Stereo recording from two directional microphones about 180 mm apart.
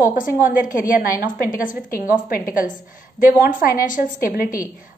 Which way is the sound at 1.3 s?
50° left (ahead or behind).